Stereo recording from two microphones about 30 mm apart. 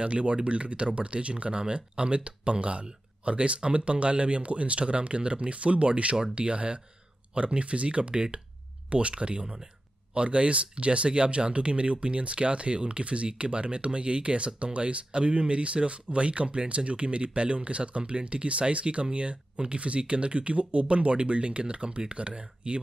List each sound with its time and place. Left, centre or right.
0.0 s speech: right
8.1 s speech: right
8.9 s speech: right